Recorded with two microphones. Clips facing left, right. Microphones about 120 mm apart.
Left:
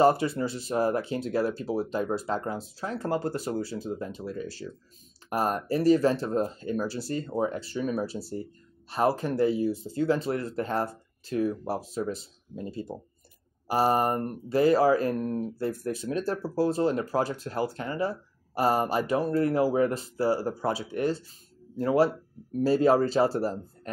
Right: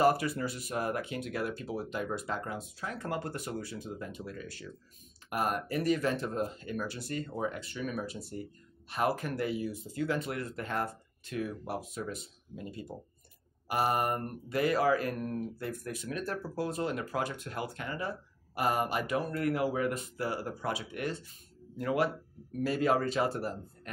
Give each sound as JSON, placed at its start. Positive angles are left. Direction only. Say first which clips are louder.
{"t": 0.0, "sound": "speech", "louder": "left 5 dB", "side_deg": 25}